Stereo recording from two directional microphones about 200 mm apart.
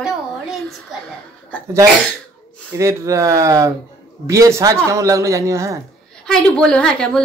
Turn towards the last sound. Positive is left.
turn(degrees=5)  # may be behind; listen again after turning